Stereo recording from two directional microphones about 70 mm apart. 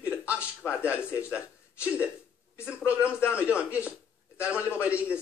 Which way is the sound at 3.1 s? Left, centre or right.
Left.